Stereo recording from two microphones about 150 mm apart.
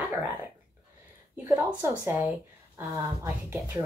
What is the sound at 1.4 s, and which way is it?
Speech, 15° right (ahead or behind).